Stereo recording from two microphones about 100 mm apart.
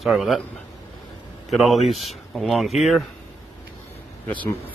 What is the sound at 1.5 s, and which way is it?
Speech, centre (ahead or behind).